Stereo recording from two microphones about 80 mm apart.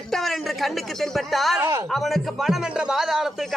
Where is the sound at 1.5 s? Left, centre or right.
Right.